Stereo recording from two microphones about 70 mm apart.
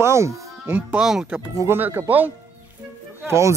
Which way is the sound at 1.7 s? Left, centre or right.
Right.